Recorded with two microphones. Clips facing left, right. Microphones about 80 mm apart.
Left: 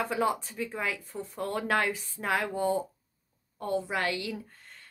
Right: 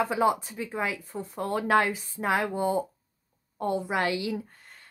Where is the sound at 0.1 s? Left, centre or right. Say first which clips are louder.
Right 4 dB; centre.